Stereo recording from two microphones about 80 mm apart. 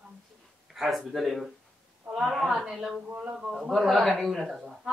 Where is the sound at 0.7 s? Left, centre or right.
Centre.